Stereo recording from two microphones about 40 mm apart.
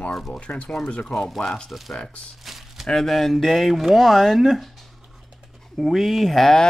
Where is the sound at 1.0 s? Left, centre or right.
Centre.